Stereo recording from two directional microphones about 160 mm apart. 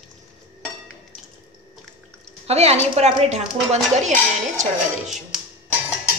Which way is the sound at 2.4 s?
40° right (ahead or behind).